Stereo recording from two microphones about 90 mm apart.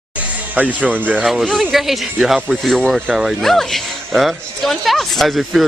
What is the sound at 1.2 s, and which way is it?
Speech, centre (ahead or behind).